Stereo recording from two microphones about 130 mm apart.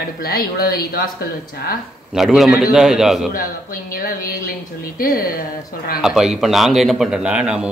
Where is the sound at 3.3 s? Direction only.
90° left.